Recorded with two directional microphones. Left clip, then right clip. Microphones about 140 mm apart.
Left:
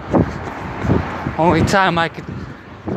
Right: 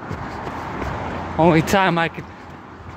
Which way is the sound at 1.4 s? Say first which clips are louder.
Left 1 dB; 25° right (ahead or behind).